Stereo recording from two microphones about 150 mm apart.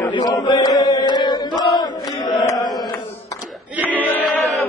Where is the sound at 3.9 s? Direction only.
10° left (ahead or behind).